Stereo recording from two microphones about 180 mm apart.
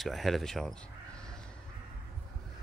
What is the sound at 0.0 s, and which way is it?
Speech, centre (ahead or behind).